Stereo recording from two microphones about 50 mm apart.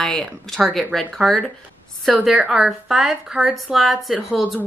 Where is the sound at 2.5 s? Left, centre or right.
Centre.